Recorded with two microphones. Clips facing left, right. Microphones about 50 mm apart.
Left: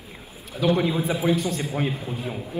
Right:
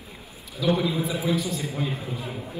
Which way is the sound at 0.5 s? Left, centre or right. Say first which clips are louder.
Left 2 dB; left.